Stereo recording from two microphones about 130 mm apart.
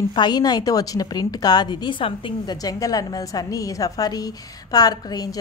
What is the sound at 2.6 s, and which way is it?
A woman's voice, 30° left (ahead or behind).